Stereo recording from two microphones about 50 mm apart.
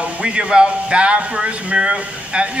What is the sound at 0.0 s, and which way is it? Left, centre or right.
Speech, right.